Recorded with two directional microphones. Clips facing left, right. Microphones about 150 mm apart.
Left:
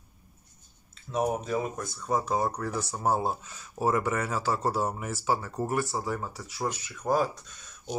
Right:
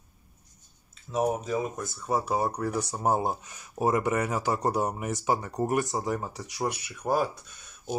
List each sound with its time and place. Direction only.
1.1 s speech: centre (ahead or behind)